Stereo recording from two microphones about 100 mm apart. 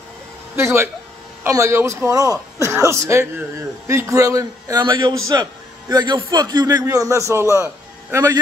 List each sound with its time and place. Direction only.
0.6 s a man's voice: 25° right (ahead or behind)